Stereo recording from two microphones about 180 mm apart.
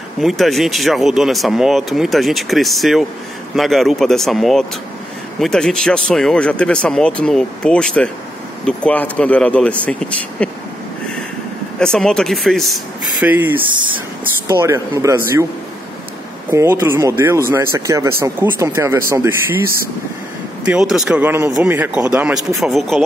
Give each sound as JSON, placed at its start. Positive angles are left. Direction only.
{"t": 0.2, "sound": "speech", "side_deg": 0}
{"t": 11.8, "sound": "speech", "side_deg": 5}
{"t": 13.2, "sound": "speech", "side_deg": -10}
{"t": 16.4, "sound": "speech", "side_deg": -15}
{"t": 20.6, "sound": "speech", "side_deg": -5}